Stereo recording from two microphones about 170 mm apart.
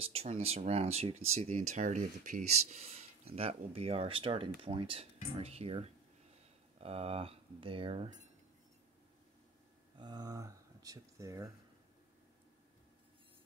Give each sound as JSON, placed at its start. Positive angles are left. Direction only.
{"t": 0.0, "sound": "speech", "side_deg": -35}
{"t": 9.9, "sound": "speech", "side_deg": -25}